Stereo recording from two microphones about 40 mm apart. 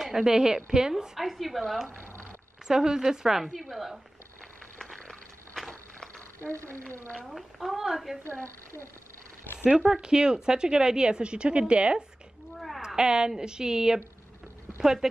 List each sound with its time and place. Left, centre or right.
0.0 s a woman's voice: centre
1.2 s a woman's voice: centre
2.7 s a woman's voice: centre
3.5 s a woman's voice: centre
4.7 s a sound: centre
5.7 s walk: centre
7.2 s a woman's voice: centre
8.2 s a woman's voice: right
9.4 s cat: left
9.7 s a woman's voice: centre
12.5 s a sound: centre
12.8 s a woman's voice: centre